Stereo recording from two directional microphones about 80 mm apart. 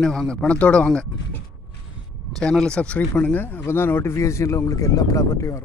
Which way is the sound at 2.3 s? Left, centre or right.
Centre.